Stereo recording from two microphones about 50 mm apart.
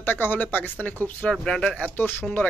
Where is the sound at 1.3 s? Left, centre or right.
Centre.